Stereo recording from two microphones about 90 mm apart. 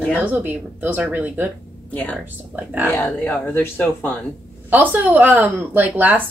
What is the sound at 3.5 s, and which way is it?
Speech, 25° left (ahead or behind).